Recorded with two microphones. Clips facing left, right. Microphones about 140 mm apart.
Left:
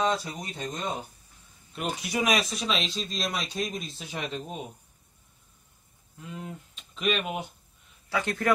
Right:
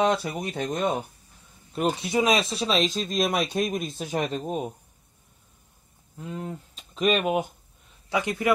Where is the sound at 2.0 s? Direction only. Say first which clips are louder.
Right 1 dB; 25° right (ahead or behind); by 4.7 s 45° right (ahead or behind).